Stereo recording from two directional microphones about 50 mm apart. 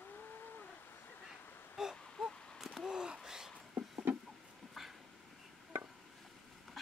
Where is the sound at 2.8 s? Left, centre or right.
Centre.